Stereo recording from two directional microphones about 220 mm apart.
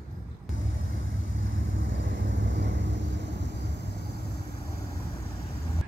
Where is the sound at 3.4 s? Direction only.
50° left (ahead or behind).